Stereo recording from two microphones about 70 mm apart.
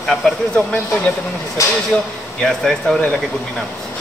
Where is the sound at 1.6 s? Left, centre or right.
Left.